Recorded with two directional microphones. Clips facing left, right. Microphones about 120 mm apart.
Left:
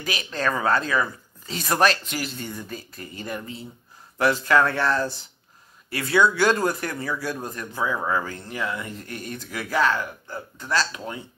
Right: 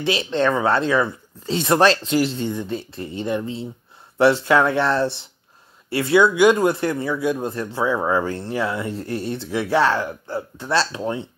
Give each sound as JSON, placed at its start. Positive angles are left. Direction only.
{"t": 0.0, "sound": "speech", "side_deg": -30}